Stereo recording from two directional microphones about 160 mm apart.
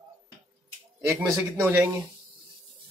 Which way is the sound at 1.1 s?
15° right (ahead or behind).